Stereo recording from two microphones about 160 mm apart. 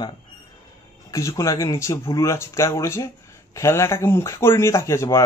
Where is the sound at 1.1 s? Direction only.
20° left (ahead or behind).